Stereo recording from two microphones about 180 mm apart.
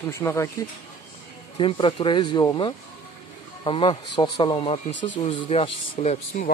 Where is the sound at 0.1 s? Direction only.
15° left (ahead or behind).